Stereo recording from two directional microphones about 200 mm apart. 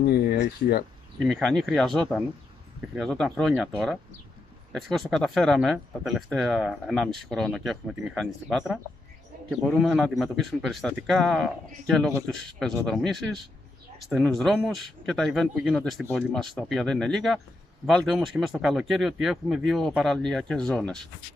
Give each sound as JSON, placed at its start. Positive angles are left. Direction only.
{"t": 0.0, "sound": "speech", "side_deg": 50}
{"t": 1.2, "sound": "speech", "side_deg": 0}